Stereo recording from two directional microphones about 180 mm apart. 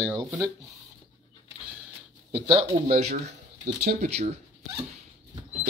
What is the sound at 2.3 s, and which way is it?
Speech, 35° right (ahead or behind).